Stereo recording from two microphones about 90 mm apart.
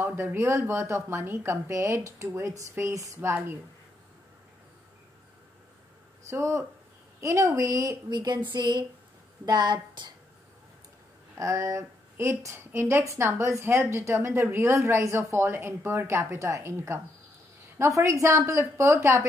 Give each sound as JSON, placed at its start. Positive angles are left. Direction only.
{"t": 0.0, "sound": "speech", "side_deg": -25}
{"t": 3.2, "sound": "a woman's voice", "side_deg": -25}
{"t": 6.2, "sound": "speech", "side_deg": -30}
{"t": 8.1, "sound": "a woman's voice", "side_deg": -55}
{"t": 11.3, "sound": "a woman's voice", "side_deg": -35}